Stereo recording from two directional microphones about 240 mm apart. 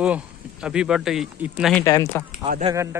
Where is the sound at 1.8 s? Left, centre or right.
Centre.